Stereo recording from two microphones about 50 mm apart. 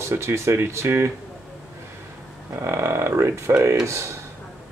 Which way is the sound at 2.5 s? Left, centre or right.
Right.